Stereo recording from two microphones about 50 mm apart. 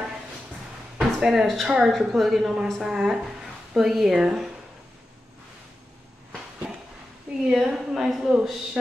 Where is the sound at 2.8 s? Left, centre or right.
Centre.